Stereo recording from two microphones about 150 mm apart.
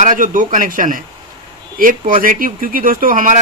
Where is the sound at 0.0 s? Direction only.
60° right (ahead or behind).